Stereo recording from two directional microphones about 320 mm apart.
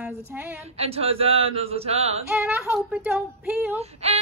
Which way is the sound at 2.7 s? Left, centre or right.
Centre.